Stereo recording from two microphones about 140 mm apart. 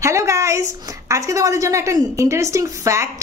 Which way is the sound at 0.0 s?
20° right (ahead or behind).